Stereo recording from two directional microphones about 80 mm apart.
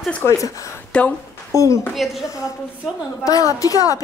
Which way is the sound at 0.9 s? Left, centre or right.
Centre.